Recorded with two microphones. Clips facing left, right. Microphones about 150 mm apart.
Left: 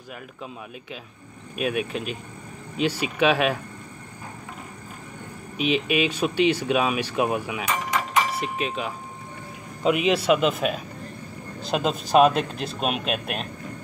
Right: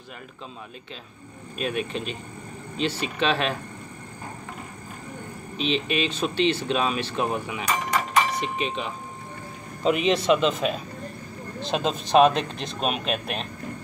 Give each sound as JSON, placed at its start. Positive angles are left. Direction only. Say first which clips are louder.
{"t": 1.6, "sound": "speech", "louder": "left 2 dB", "side_deg": 5}
{"t": 5.6, "sound": "speech", "louder": "left 3 dB", "side_deg": 10}